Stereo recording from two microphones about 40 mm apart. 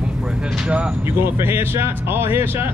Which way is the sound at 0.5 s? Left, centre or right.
Right.